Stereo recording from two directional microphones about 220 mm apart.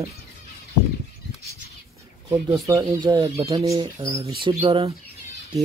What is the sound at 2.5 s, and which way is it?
Speech, 15° right (ahead or behind).